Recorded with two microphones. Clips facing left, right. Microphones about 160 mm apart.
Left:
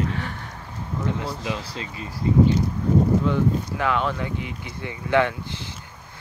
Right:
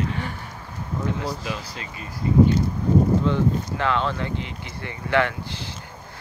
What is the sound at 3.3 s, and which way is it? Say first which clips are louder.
Speech: even; 10° left (ahead or behind).